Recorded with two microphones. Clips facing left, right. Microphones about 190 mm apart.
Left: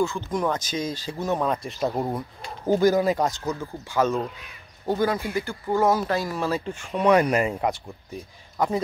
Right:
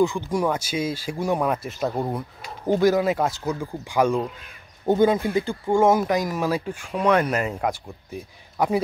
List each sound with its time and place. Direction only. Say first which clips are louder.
0.0 s speech: right 3 dB; 10° right (ahead or behind)
6.9 s speech: left 1 dB; 5° left (ahead or behind)
8.5 s speech: right 2 dB; 10° right (ahead or behind)